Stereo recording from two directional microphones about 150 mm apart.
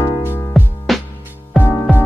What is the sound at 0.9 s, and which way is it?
Music, centre (ahead or behind).